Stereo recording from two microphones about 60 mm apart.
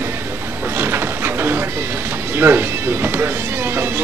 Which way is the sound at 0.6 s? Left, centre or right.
Right.